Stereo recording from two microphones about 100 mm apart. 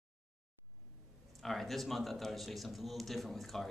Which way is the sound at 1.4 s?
Centre (ahead or behind).